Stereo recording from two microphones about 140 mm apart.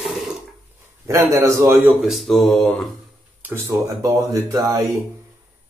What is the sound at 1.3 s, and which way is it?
Speech, 20° right (ahead or behind).